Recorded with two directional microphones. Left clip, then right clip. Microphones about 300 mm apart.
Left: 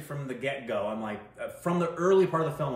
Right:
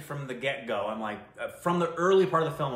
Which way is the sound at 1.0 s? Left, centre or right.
Centre.